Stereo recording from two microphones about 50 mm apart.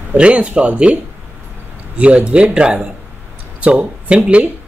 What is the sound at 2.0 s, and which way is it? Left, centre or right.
Speech, right.